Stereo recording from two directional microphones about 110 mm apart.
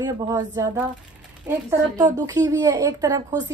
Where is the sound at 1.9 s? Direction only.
35° right (ahead or behind).